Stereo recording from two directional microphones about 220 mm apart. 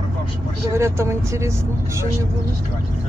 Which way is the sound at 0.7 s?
10° right (ahead or behind).